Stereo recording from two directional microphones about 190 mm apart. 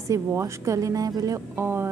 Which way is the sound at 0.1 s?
15° right (ahead or behind).